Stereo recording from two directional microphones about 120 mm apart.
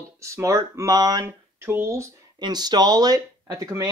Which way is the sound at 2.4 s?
35° right (ahead or behind).